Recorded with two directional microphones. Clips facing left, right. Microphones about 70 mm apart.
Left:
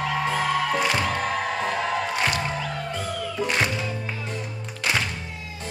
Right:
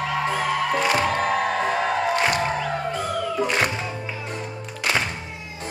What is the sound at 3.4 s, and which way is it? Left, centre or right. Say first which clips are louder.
Music: right 1 dB; centre.